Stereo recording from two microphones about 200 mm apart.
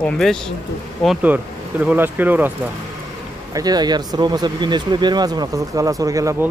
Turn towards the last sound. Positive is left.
turn(degrees=-15)  # may be behind; listen again after turning